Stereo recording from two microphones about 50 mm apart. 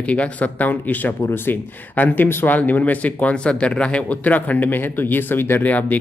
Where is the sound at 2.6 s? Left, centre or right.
Left.